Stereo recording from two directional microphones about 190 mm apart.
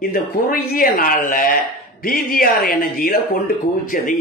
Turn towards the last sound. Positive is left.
turn(degrees=50)  # may be behind; listen again after turning